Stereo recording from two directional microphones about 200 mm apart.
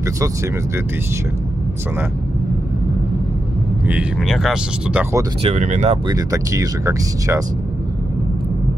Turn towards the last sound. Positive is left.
turn(degrees=-15)  # may be behind; listen again after turning